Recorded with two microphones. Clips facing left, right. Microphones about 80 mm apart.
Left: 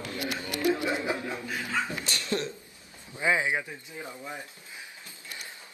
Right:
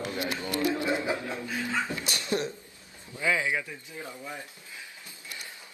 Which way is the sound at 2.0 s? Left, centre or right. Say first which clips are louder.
Right 1 dB; centre.